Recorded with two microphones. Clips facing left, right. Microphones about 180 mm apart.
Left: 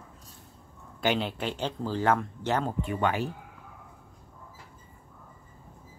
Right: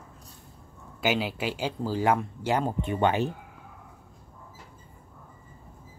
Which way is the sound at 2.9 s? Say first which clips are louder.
Right 4 dB; 25° right (ahead or behind).